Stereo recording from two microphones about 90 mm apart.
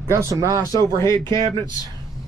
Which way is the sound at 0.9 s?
40° left (ahead or behind).